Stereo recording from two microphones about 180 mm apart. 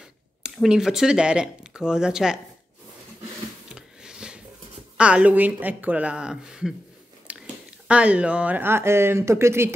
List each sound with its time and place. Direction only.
0.4 s speech: 5° right (ahead or behind)
3.6 s a sound: 5° right (ahead or behind)
4.9 s speech: 5° right (ahead or behind)
7.3 s chewing: 5° right (ahead or behind)
7.9 s speech: 5° right (ahead or behind)